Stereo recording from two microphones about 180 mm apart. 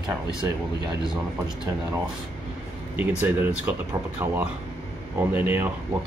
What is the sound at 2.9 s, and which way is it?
Speech, 10° right (ahead or behind).